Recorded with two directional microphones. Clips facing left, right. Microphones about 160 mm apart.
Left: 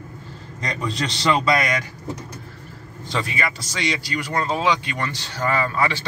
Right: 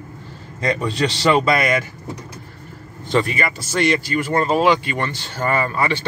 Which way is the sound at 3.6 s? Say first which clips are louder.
Right 7 dB; 55° right (ahead or behind).